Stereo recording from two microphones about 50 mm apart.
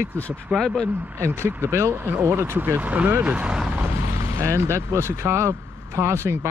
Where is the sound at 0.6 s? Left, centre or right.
Centre.